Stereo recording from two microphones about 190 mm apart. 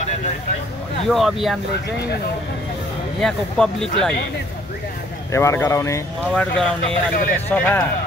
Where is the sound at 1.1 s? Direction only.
Centre (ahead or behind).